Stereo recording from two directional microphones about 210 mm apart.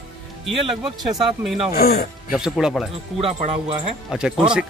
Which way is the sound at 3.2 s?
25° right (ahead or behind).